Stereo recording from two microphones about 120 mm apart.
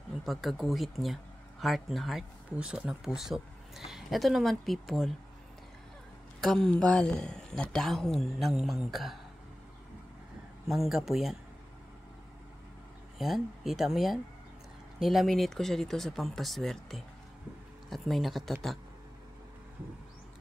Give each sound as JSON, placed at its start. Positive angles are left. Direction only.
{"t": 0.2, "sound": "speech", "side_deg": 0}
{"t": 6.4, "sound": "speech", "side_deg": 5}
{"t": 10.7, "sound": "speech", "side_deg": 0}
{"t": 13.2, "sound": "speech", "side_deg": 0}